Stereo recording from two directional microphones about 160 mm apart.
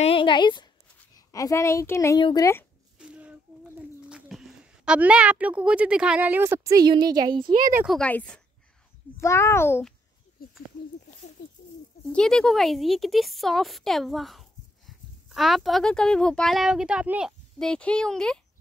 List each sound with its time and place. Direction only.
0.0 s a sound: 35° left (ahead or behind)
1.1 s a child's voice: 20° left (ahead or behind)
3.0 s speech: 5° right (ahead or behind); by 7.7 s 30° right (ahead or behind)
7.8 s a child's voice: centre (ahead or behind); by 9.8 s 15° left (ahead or behind)
10.4 s a sound: 70° left (ahead or behind)
12.1 s speech: 5° left (ahead or behind)
17.6 s speech: 5° left (ahead or behind)